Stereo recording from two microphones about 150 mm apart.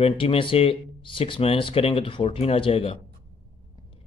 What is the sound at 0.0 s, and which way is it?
Speech, 35° left (ahead or behind).